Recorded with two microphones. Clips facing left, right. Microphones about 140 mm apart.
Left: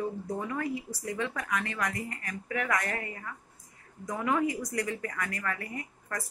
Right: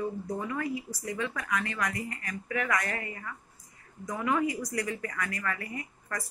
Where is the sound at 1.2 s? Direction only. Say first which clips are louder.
Even; 20° left (ahead or behind).